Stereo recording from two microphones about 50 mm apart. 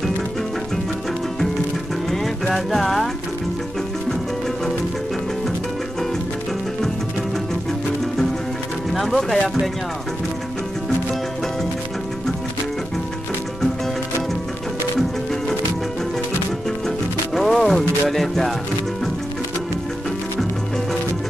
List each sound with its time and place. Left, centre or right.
2.5 s music: centre
8.9 s speech: centre
16.8 s music: centre